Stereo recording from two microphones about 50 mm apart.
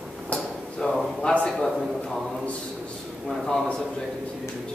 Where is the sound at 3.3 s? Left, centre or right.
Centre.